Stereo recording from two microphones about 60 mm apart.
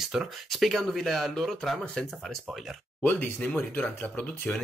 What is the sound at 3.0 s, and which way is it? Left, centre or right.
Speech, left.